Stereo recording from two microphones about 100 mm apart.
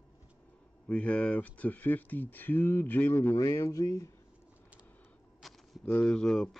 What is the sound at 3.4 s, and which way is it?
Speech, 30° left (ahead or behind).